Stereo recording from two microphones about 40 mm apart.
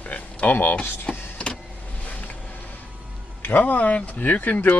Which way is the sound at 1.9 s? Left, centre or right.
Left.